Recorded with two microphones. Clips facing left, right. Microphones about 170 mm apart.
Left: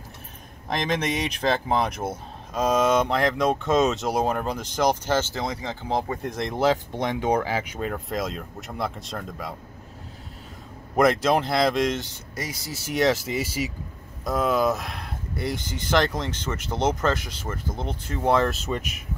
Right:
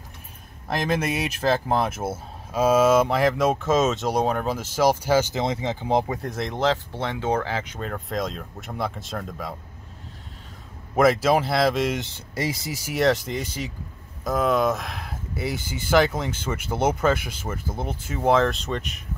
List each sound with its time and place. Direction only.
0.7 s speech: 5° right (ahead or behind)
5.4 s speech: 25° right (ahead or behind)
6.0 s speech: centre (ahead or behind)
6.6 s speech: 15° left (ahead or behind)
11.0 s speech: 5° right (ahead or behind)
12.0 s speech: 25° right (ahead or behind)
12.9 s speech: centre (ahead or behind)